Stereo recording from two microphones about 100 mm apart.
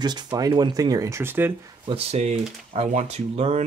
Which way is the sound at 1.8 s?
80° right.